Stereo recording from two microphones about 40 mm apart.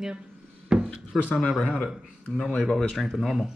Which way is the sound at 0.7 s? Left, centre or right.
Right.